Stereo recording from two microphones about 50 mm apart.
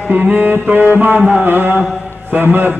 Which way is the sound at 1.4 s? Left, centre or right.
Right.